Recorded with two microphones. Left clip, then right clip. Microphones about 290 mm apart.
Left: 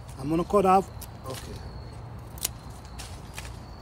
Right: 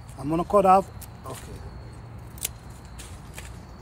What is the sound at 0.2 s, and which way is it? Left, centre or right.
Speech, centre.